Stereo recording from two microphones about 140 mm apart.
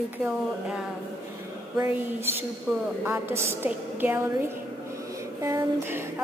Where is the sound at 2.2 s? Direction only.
15° right (ahead or behind).